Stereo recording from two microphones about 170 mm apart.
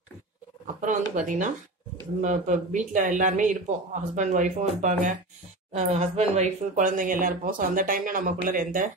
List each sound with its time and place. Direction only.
0.7 s speech: 50° right (ahead or behind)